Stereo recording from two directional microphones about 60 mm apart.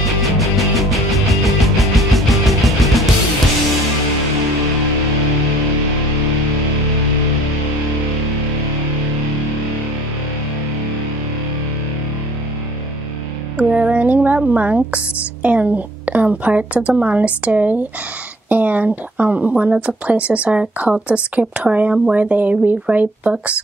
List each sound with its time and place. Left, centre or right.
0.4 s music: centre
13.6 s a sound: right
15.4 s speech: right
18.5 s a sound: right
19.5 s speech: centre
20.1 s speech: right